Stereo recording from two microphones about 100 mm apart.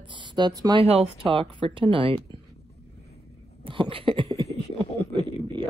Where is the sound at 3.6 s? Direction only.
60° right (ahead or behind).